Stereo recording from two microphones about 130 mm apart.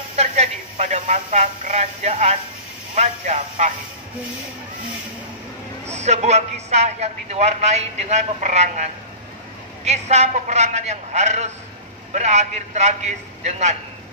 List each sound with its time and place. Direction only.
0.1 s a man's voice: 60° right (ahead or behind)
5.9 s a man's voice: 60° right (ahead or behind)
9.8 s a man's voice: 60° right (ahead or behind)